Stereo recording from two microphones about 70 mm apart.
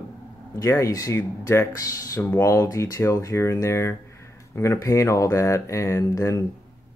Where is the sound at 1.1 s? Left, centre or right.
Left.